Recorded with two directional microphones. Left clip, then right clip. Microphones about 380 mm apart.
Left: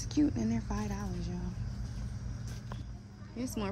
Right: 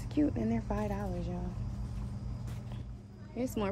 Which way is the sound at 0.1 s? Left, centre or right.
Centre.